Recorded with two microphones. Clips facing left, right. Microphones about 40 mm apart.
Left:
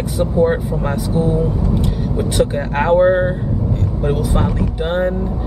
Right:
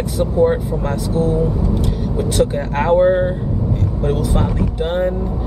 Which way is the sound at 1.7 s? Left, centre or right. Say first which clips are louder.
Left 1 dB; centre.